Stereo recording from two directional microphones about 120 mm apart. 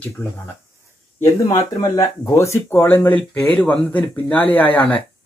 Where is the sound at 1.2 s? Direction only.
25° left (ahead or behind).